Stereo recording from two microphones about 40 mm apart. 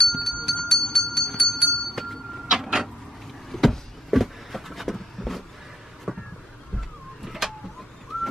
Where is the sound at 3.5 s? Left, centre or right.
Centre.